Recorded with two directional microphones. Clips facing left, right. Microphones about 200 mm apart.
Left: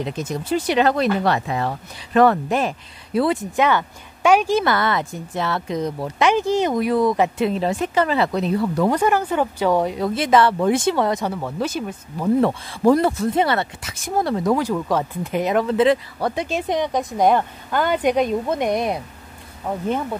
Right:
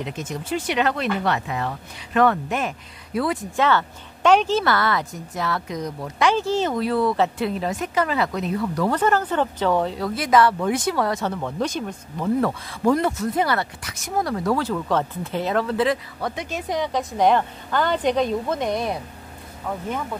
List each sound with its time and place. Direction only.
0.0 s speech: 35° left (ahead or behind)
3.5 s a woman's voice: 15° left (ahead or behind); by 8.8 s 30° left (ahead or behind)
8.8 s a woman's voice: 10° left (ahead or behind)
11.3 s a woman's voice: 5° left (ahead or behind)
12.4 s a woman's voice: 25° left (ahead or behind)
16.2 s a woman's voice: 30° left (ahead or behind)